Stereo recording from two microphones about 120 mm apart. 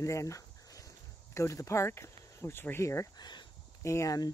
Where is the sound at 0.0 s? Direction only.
25° left (ahead or behind).